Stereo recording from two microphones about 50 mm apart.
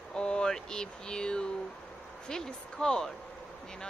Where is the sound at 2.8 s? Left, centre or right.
Centre.